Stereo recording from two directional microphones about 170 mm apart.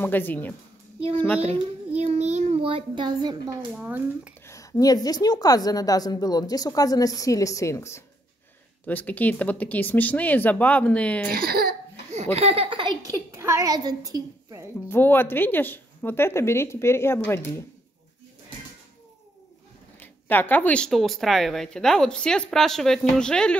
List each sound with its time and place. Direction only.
0.0 s a woman's voice: 10° left (ahead or behind)
1.9 s a sound: 40° right (ahead or behind)
3.7 s speech: 10° right (ahead or behind)
4.5 s a woman's voice: 20° left (ahead or behind)
11.2 s speech: 60° right (ahead or behind)
12.4 s a child's voice: 35° right (ahead or behind)
13.1 s a woman's voice: 15° right (ahead or behind)
14.9 s a woman's voice: 10° left (ahead or behind)
20.0 s speech: 10° left (ahead or behind)